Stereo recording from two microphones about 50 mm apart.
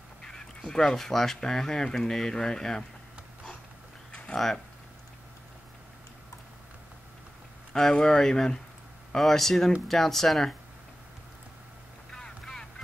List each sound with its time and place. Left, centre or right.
0.2 s speech: centre
7.7 s speech: centre
12.1 s boat: centre